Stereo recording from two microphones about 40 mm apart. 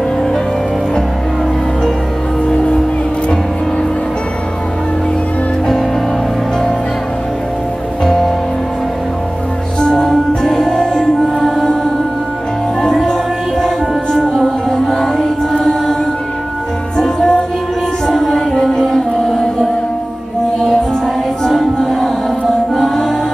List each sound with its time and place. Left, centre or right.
2.4 s music: left
8.0 s music: centre
9.8 s music: centre
16.9 s music: centre
21.5 s music: centre